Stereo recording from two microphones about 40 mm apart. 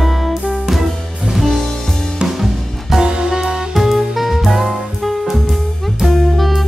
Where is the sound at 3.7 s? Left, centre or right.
Centre.